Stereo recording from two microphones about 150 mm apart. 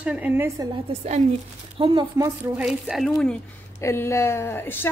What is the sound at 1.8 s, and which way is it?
Speech, 25° right (ahead or behind).